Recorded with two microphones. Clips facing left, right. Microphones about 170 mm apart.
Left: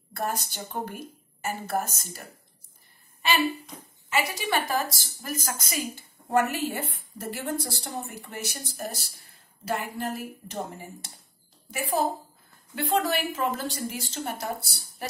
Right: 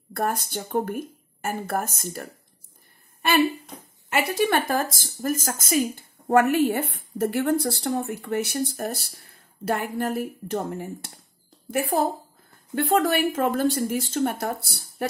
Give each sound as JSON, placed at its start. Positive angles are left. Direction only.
{"t": 0.1, "sound": "a woman's voice", "side_deg": -50}
{"t": 3.2, "sound": "a woman's voice", "side_deg": -55}